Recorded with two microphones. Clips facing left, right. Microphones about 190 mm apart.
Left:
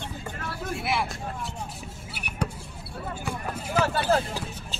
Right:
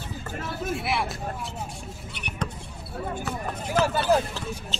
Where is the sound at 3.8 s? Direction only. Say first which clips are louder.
Right 2 dB; 10° right (ahead or behind).